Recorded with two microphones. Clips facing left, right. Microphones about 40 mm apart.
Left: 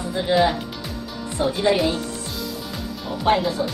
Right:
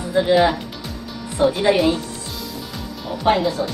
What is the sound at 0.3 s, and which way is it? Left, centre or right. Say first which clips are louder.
Music: right 1 dB; centre.